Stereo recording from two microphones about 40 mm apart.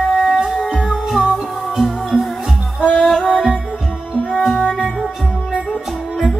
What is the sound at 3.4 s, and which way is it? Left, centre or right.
Music, right.